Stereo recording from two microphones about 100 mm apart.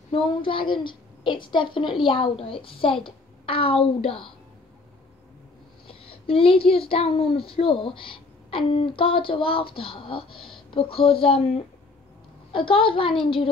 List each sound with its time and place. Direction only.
0.1 s speech: 60° left (ahead or behind)
5.9 s speech: 65° left (ahead or behind)